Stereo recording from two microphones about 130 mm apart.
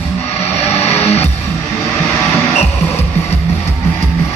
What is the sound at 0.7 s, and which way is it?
Music, 55° left (ahead or behind).